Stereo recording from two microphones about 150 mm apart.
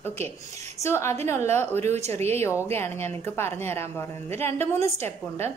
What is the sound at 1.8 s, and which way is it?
Speech, 45° right (ahead or behind).